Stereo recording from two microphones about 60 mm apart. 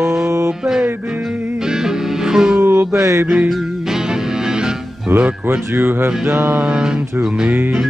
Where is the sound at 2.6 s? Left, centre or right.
Right.